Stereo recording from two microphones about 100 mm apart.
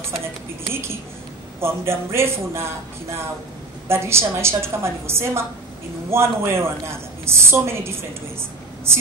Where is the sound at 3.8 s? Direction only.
25° right (ahead or behind).